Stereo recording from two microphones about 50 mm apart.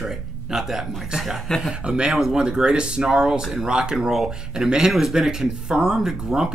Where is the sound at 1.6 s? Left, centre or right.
Centre.